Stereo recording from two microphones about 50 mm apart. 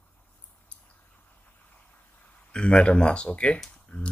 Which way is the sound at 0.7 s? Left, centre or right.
Left.